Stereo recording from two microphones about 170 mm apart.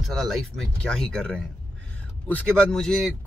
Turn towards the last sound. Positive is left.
turn(degrees=0)  # may be behind; listen again after turning